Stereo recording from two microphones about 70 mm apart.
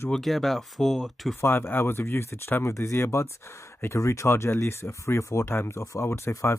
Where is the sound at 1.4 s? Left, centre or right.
Left.